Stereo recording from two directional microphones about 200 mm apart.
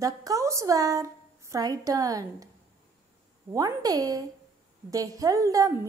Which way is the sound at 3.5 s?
15° right (ahead or behind).